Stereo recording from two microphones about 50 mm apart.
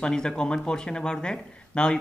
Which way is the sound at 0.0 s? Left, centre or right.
Centre.